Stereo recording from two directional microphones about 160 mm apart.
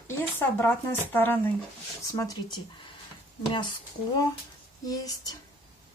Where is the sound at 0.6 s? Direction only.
10° left (ahead or behind).